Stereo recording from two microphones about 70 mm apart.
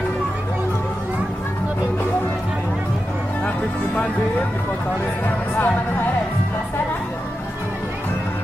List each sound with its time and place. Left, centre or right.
3.4 s music: centre
5.2 s speech: left